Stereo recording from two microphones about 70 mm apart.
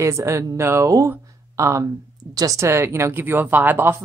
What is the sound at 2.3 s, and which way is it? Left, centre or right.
Speech, right.